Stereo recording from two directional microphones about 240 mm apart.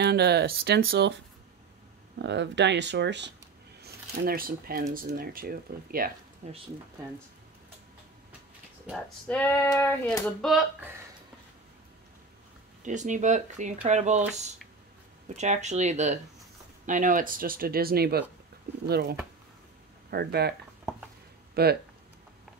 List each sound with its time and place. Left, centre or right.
0.0 s speech: right
8.8 s speech: centre
12.8 s speech: right
15.2 s speech: right
21.6 s speech: right